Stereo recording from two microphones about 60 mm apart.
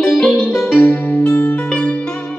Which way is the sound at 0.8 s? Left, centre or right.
Left.